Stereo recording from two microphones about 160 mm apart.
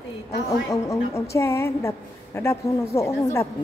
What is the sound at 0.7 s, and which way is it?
A woman's voice, 20° left (ahead or behind).